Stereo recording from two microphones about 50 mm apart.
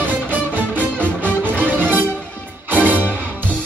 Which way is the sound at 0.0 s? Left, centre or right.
Right.